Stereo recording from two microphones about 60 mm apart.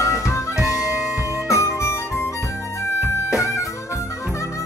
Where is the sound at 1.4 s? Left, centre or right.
Left.